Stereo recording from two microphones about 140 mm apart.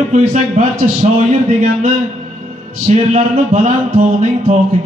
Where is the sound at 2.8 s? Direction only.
55° right (ahead or behind).